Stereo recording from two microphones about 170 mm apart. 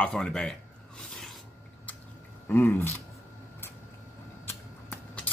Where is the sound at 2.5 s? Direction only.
10° left (ahead or behind).